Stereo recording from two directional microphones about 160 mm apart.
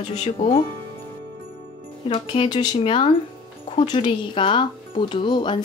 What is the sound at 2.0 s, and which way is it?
Speech, 35° left (ahead or behind).